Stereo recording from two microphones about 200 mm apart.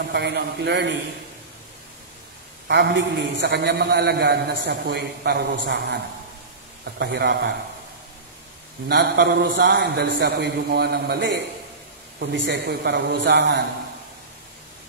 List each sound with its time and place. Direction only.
0.1 s a man's voice: 55° right (ahead or behind)
2.7 s a man's voice: 65° right (ahead or behind)
8.8 s a man's voice: 55° right (ahead or behind)